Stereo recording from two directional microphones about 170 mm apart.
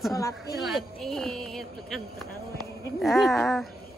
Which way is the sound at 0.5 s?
Centre (ahead or behind).